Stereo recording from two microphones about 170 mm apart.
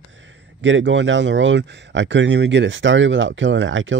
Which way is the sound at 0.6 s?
90° right.